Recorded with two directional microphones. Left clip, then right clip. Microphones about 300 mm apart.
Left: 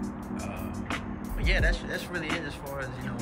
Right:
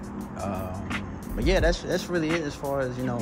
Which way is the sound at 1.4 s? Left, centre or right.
Centre.